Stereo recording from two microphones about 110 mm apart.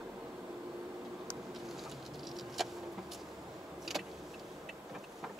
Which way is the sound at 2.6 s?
Centre (ahead or behind).